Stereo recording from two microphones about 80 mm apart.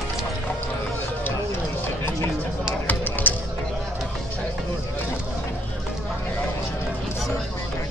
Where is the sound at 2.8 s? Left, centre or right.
Left.